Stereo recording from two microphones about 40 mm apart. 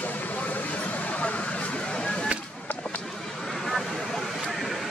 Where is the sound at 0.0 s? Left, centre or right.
Left.